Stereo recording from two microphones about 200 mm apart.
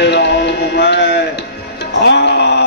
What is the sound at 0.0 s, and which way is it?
Music, 55° left (ahead or behind).